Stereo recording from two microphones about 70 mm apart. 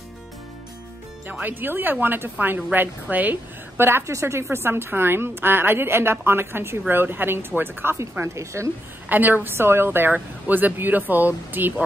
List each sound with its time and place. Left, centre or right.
1.4 s a woman's voice: right
8.2 s a woman's voice: right
9.1 s speech: right